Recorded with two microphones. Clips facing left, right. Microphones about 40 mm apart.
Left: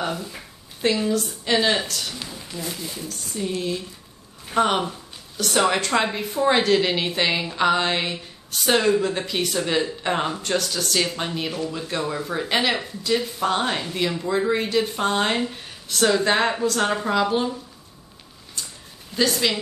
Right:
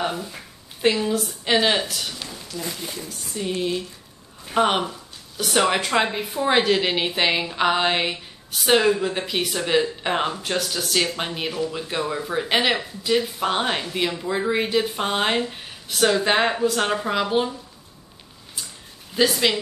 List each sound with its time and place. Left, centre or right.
0.8 s speech: centre
2.1 s speech: centre
2.6 s speech: right
18.6 s a sound: centre
19.1 s speech: centre